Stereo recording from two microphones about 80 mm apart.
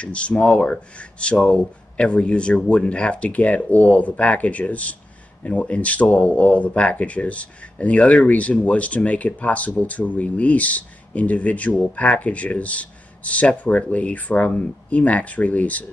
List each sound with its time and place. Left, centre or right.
0.0 s speech: centre